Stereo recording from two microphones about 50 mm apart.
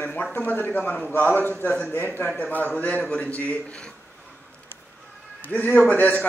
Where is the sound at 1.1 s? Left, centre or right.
Left.